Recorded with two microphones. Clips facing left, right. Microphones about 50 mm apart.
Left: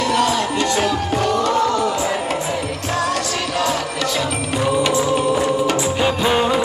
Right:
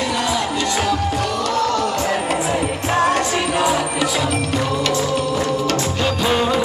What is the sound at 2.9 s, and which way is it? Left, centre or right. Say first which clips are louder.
Music: right 4 dB; right.